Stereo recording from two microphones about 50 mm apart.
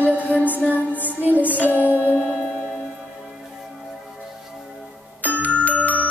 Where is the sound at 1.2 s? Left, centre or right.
Right.